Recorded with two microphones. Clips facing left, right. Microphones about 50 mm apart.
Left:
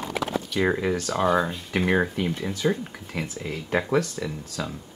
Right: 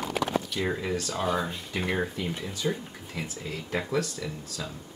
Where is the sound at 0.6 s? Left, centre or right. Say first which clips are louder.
Left 6 dB; left.